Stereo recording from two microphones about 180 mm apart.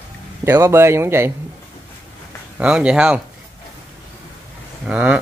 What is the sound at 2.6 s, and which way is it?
Speech, 5° right (ahead or behind).